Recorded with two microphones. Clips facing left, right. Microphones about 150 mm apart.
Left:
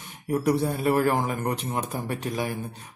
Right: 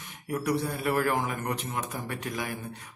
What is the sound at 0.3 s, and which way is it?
Speech, 30° left (ahead or behind).